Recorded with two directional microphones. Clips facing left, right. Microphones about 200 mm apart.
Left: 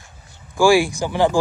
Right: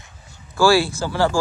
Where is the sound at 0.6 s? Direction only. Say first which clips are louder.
Left 2 dB; 15° left (ahead or behind).